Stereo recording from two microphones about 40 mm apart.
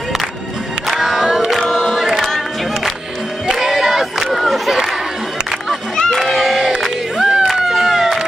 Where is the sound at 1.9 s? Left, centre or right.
Centre.